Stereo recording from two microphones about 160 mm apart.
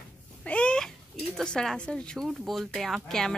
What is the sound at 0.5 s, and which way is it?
Cat, 5° left (ahead or behind).